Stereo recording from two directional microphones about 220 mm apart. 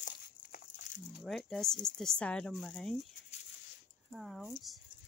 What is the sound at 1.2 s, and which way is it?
Speech, centre (ahead or behind).